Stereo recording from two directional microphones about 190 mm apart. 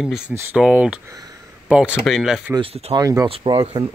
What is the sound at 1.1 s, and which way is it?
Speech, 20° right (ahead or behind).